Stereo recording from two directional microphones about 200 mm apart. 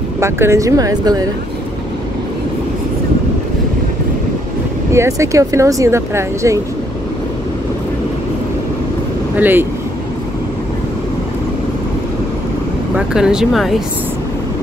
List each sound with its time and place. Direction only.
0.2 s speech: 15° right (ahead or behind)
4.9 s speech: 15° right (ahead or behind)
9.4 s speech: 10° right (ahead or behind)
12.9 s speech: 5° right (ahead or behind)